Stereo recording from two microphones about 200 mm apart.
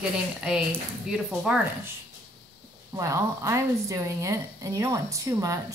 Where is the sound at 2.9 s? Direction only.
15° right (ahead or behind).